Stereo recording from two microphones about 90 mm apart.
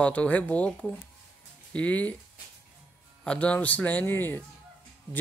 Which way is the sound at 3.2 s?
10° left (ahead or behind).